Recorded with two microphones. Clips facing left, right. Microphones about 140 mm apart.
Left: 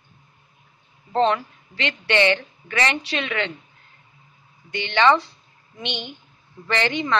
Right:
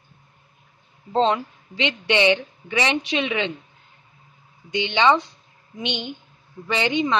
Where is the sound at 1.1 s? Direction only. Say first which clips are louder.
Even; 20° right (ahead or behind).